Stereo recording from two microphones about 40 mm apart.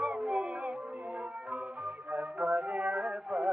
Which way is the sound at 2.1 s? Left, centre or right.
Right.